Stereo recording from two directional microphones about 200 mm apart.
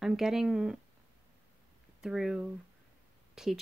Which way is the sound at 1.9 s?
Centre (ahead or behind).